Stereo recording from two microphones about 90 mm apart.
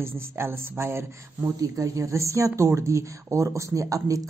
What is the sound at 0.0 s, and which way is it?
Speech, 30° right (ahead or behind).